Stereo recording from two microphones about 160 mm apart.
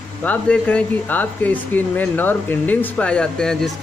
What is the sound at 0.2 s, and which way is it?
A man's voice, 10° left (ahead or behind).